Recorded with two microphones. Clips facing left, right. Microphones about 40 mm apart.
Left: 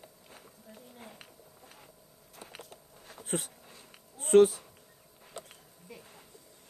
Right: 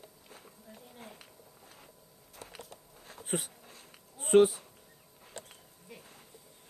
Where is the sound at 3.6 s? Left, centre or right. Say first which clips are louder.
Even; centre.